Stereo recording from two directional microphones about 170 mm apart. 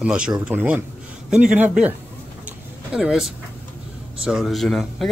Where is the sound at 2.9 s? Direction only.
5° right (ahead or behind).